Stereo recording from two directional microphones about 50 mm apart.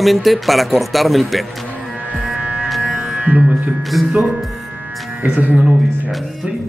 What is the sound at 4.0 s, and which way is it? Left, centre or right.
Speech, centre.